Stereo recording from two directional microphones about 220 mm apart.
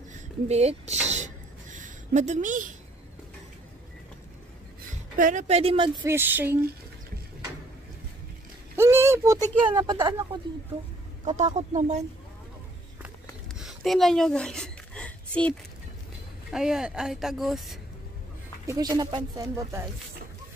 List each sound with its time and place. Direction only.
0.1 s speech: 30° right (ahead or behind)
1.0 s a sound: 30° right (ahead or behind)
5.1 s speech: 35° right (ahead or behind); by 6.6 s 10° right (ahead or behind)
8.7 s speech: 10° right (ahead or behind)
11.2 s speech: 30° right (ahead or behind)
13.6 s a sound: centre (ahead or behind)
16.4 s a woman's voice: 5° right (ahead or behind)
18.7 s speech: 15° right (ahead or behind)